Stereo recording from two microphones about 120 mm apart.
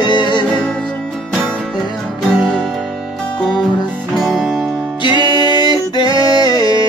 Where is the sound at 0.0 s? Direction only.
40° left (ahead or behind).